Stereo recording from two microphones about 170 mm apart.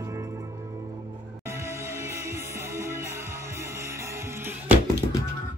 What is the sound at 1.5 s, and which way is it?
Music, 15° right (ahead or behind).